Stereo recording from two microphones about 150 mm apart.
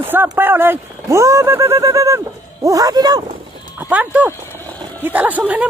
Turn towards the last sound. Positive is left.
turn(degrees=-10)  # may be behind; listen again after turning